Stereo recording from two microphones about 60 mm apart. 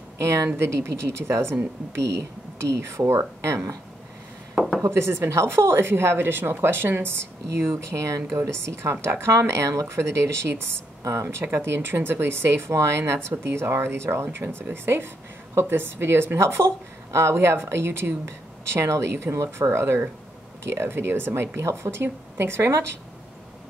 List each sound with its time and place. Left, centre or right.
0.2 s speech: right
2.7 s speech: right
4.6 s a sound: centre
4.8 s speech: right
7.5 s speech: right
8.3 s speech: right